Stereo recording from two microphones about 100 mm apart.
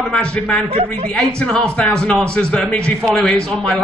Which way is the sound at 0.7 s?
85° right.